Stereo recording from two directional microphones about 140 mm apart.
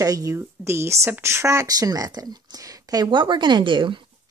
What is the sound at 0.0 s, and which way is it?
Speech, 25° right (ahead or behind).